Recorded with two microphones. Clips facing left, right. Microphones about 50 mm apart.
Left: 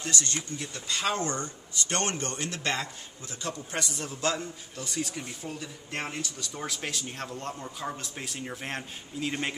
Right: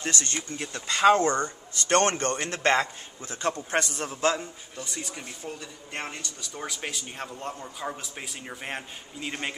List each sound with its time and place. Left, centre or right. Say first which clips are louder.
0.0 s speech: right 2 dB; right
4.7 s speech: left 3 dB; centre